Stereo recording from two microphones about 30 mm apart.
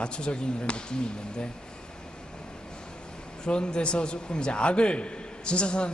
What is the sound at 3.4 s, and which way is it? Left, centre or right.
A man's voice, left.